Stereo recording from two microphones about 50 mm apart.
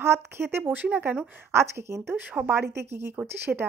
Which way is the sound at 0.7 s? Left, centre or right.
Right.